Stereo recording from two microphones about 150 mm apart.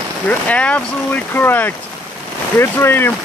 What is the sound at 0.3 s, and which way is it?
Speech, 10° left (ahead or behind).